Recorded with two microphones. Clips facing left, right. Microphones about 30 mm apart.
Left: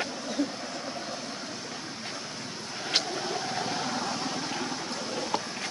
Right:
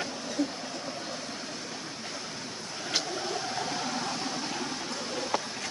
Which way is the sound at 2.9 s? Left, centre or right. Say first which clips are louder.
Left 3 dB; left.